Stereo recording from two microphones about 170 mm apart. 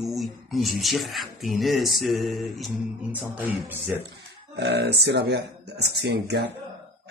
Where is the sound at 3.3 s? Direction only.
10° right (ahead or behind).